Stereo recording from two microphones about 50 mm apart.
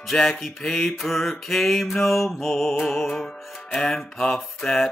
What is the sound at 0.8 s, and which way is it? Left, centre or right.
Music, centre.